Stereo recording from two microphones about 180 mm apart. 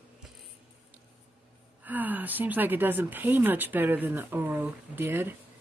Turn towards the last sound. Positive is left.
turn(degrees=-10)  # may be behind; listen again after turning